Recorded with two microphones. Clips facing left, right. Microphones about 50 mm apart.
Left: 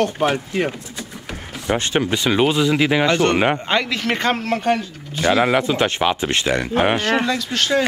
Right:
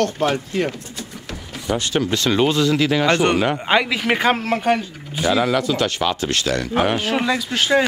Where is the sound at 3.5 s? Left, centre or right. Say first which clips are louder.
Right 2 dB; centre.